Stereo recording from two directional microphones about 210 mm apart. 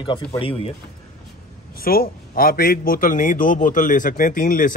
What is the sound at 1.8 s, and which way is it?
Speech, 45° left (ahead or behind).